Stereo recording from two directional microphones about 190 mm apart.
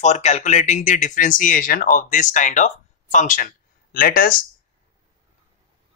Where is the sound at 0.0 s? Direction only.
40° left (ahead or behind).